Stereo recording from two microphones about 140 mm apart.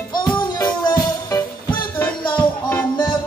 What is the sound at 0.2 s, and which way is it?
Music, 30° left (ahead or behind).